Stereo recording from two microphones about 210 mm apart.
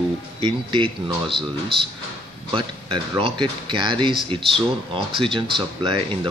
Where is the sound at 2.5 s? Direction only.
25° right (ahead or behind).